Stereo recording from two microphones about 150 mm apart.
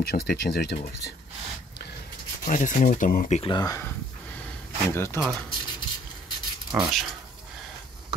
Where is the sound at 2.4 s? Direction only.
55° left (ahead or behind).